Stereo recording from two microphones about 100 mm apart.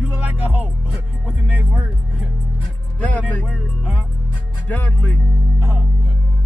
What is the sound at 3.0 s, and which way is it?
Speech, 15° left (ahead or behind).